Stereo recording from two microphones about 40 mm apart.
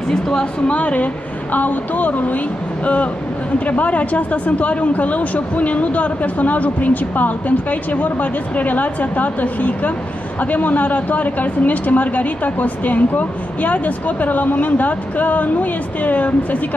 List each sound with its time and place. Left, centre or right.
0.1 s a woman's voice: centre
0.7 s a woman's voice: left